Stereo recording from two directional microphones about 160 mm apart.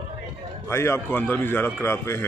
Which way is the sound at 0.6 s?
15° left (ahead or behind).